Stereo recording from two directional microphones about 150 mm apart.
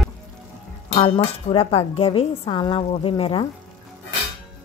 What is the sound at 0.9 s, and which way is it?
Speech, 40° left (ahead or behind).